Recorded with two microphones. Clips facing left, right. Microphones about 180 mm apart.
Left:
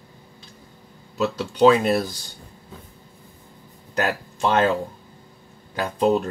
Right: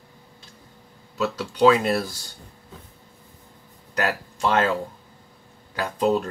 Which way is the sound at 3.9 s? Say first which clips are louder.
Left 1 dB; 25° left (ahead or behind).